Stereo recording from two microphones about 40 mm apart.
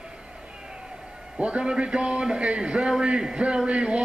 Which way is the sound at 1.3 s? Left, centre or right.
Right.